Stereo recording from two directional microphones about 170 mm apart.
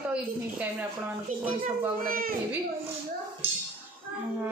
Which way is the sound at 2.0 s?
55° right (ahead or behind).